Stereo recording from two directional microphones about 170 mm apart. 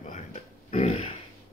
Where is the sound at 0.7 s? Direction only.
35° left (ahead or behind).